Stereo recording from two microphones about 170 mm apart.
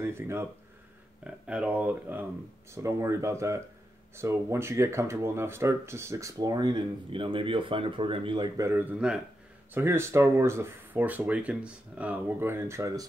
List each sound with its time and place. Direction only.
0.0 s speech: 15° right (ahead or behind)